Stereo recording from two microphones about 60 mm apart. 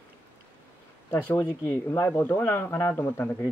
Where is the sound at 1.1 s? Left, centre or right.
Left.